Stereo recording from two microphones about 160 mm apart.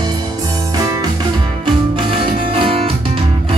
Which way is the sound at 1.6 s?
30° right (ahead or behind).